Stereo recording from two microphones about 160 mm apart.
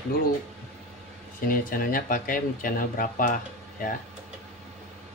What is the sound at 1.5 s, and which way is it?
Speech, 60° left (ahead or behind).